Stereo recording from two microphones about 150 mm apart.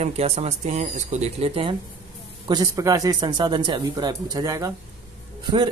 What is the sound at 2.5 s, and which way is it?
Speech, 20° right (ahead or behind).